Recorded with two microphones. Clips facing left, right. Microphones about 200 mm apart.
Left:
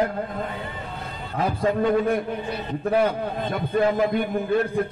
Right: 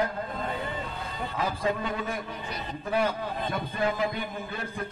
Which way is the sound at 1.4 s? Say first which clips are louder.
Left 8 dB; 55° left (ahead or behind).